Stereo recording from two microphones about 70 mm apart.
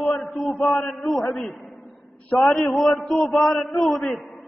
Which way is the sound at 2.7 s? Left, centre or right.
Centre.